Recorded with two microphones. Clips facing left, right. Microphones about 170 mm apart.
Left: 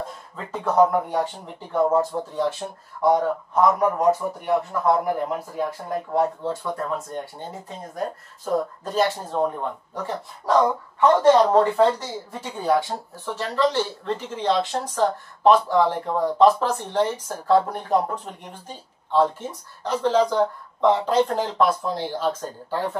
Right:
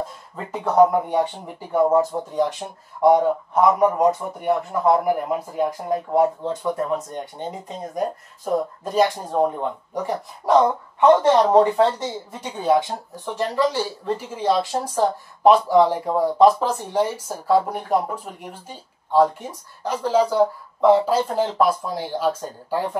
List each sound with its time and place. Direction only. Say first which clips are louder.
0.4 s speech: right 2 dB; 15° right (ahead or behind)